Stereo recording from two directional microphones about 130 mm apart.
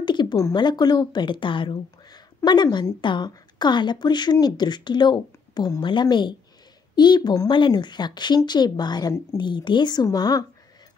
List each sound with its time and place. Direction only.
0.0 s speech: 35° left (ahead or behind)